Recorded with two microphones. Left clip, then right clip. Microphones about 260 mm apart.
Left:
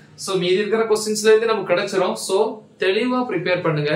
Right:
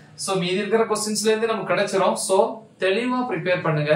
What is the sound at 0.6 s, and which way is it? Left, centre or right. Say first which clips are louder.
A man's voice: left 2 dB; centre.